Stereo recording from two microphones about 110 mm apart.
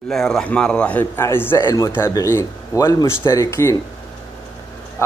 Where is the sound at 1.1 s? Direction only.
20° left (ahead or behind).